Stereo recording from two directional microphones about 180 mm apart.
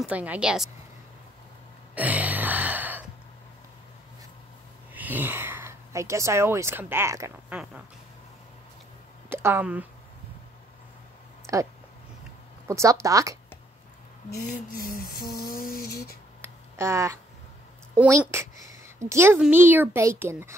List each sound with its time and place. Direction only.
0.0 s a woman's voice: 10° right (ahead or behind)
2.0 s music: 10° right (ahead or behind)
4.9 s speech: 10° right (ahead or behind)
9.3 s speech: 10° right (ahead or behind)
11.5 s a child's voice: 15° right (ahead or behind)
14.8 s a sound: 20° left (ahead or behind)
15.5 s a sound: 55° left (ahead or behind)
16.3 s a sound: 15° right (ahead or behind)
17.9 s a child's voice: 10° right (ahead or behind)